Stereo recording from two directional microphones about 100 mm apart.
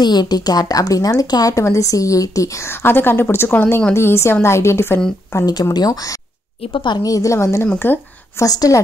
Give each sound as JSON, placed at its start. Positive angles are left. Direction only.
{"t": 0.0, "sound": "a woman's voice", "side_deg": 45}
{"t": 5.3, "sound": "speech", "side_deg": 40}
{"t": 6.7, "sound": "a woman's voice", "side_deg": 50}
{"t": 7.1, "sound": "speech", "side_deg": 35}
{"t": 8.5, "sound": "speech", "side_deg": 35}